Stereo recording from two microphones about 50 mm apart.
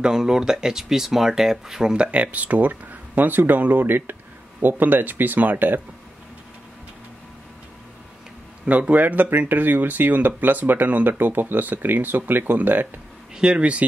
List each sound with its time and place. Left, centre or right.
0.0 s speech: centre
2.0 s speech: right
8.6 s speech: right
13.4 s speech: right